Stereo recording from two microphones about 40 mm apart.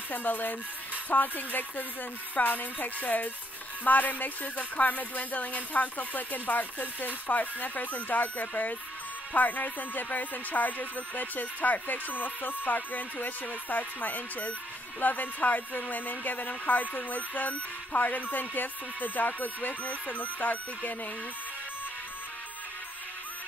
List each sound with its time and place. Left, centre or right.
0.1 s speech: left